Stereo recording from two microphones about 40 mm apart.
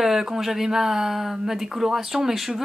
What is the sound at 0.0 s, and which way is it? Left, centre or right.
Speech, centre.